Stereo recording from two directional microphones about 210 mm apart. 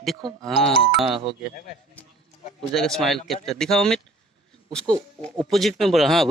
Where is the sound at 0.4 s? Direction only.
Centre (ahead or behind).